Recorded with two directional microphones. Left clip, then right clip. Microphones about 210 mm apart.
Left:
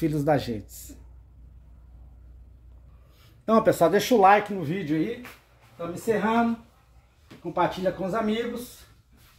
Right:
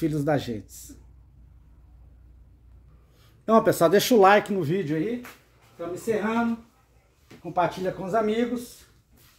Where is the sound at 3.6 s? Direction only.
20° right (ahead or behind).